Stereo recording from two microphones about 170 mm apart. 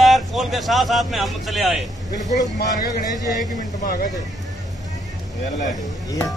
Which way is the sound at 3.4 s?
55° left (ahead or behind).